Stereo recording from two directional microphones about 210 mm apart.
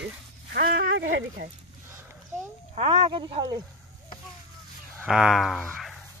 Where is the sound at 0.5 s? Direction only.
55° right (ahead or behind).